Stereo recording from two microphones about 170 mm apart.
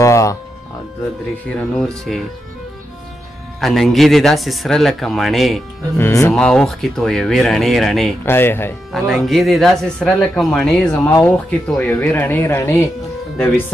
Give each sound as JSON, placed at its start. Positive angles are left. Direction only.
{"t": 0.0, "sound": "music", "side_deg": 20}
{"t": 1.8, "sound": "speech", "side_deg": 0}
{"t": 3.6, "sound": "speech", "side_deg": 0}
{"t": 5.9, "sound": "speech", "side_deg": 15}
{"t": 6.3, "sound": "speech", "side_deg": 5}
{"t": 8.3, "sound": "speech", "side_deg": 15}
{"t": 8.9, "sound": "speech", "side_deg": 0}
{"t": 11.1, "sound": "speech", "side_deg": 15}